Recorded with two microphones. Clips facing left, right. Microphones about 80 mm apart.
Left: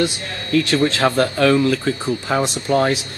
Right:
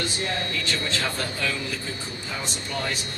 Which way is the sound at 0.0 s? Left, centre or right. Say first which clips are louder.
Left 6 dB; left.